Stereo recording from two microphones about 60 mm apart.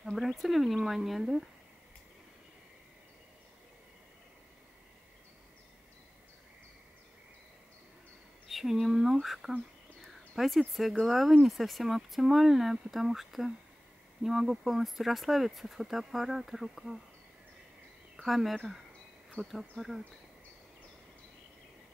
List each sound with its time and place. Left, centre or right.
0.0 s speech: centre
8.5 s a sound: centre
9.2 s speech: centre
18.1 s speech: centre
19.4 s speech: centre
19.8 s speech: centre